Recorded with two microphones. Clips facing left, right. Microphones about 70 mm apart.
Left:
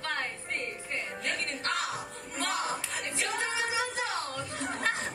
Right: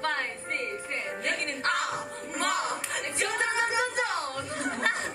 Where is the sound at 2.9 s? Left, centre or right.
Right.